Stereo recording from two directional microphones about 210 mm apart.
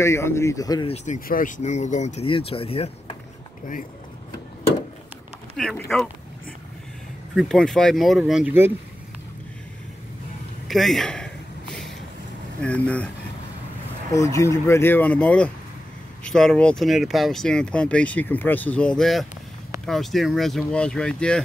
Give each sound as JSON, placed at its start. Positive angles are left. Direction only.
{"t": 0.0, "sound": "speech", "side_deg": 15}
{"t": 0.9, "sound": "speech", "side_deg": 35}
{"t": 5.6, "sound": "speech", "side_deg": 0}
{"t": 7.3, "sound": "speech", "side_deg": 5}
{"t": 10.7, "sound": "speech", "side_deg": 0}
{"t": 12.6, "sound": "speech", "side_deg": 5}
{"t": 14.1, "sound": "speech", "side_deg": 15}